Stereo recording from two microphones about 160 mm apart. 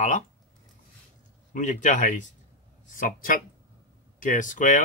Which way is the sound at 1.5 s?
50° left (ahead or behind).